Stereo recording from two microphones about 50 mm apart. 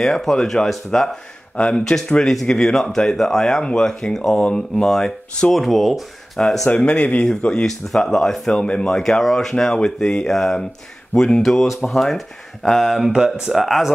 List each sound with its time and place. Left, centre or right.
0.0 s speech: centre
2.0 s speech: centre
5.6 s speech: centre
6.7 s a man's voice: left
7.6 s speech: centre
8.5 s speech: centre
11.4 s speech: centre
13.1 s speech: centre
13.5 s speech: centre